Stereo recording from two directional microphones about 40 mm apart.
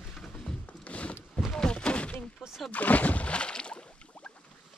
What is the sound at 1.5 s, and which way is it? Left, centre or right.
Thunk, left.